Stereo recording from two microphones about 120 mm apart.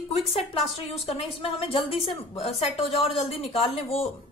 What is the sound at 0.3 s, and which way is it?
A woman's voice, 50° left (ahead or behind).